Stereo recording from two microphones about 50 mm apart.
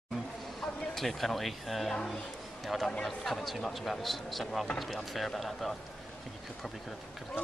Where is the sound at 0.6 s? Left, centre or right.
Centre.